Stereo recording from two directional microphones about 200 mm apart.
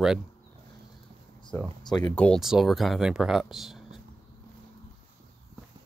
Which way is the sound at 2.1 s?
5° left (ahead or behind).